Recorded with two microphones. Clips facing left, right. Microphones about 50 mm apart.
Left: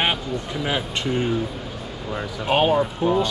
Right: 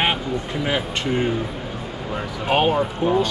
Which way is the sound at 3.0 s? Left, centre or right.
Right.